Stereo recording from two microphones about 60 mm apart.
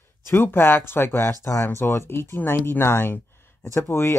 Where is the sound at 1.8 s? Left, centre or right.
Left.